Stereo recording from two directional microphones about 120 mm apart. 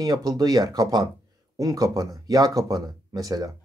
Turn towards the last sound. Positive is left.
turn(degrees=-30)  # may be behind; listen again after turning